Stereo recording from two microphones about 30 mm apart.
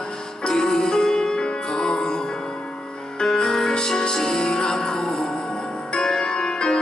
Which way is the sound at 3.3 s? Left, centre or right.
Left.